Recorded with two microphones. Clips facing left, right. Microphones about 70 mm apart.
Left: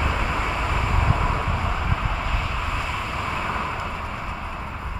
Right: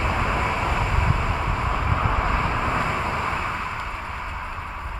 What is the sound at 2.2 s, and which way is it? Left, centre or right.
Vehicle, right.